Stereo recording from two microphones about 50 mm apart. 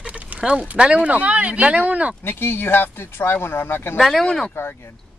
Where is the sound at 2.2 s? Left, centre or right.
Left.